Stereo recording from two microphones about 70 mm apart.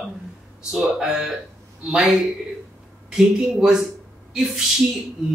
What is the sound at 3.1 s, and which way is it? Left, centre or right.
Speech, centre.